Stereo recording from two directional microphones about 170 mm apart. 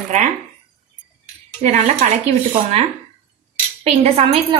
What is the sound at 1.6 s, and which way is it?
Speech, 40° right (ahead or behind).